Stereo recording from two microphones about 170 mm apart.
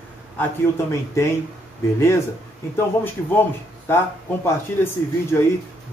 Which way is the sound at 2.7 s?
10° left (ahead or behind).